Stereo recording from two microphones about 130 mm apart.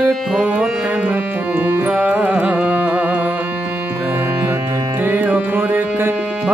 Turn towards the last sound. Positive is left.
turn(degrees=-15)  # may be behind; listen again after turning